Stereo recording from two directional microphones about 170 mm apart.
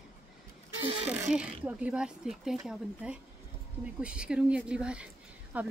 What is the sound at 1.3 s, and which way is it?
A woman's voice, 5° right (ahead or behind).